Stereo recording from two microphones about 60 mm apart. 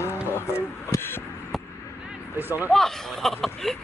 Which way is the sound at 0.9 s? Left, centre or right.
Left.